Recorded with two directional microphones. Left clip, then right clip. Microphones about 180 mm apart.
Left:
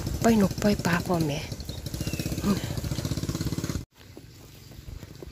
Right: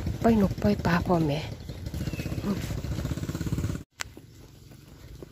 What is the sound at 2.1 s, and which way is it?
Vehicle, 10° left (ahead or behind).